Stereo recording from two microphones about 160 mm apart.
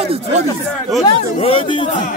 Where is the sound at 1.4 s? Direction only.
35° left (ahead or behind).